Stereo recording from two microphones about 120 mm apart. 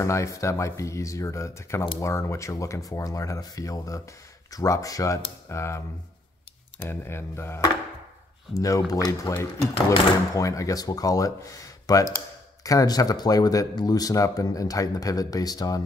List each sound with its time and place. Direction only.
0.0 s speech: 25° left (ahead or behind)